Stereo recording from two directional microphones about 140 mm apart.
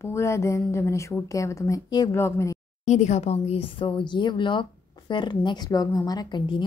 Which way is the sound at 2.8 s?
55° left (ahead or behind).